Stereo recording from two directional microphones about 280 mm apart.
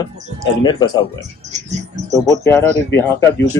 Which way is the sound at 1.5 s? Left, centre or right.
Right.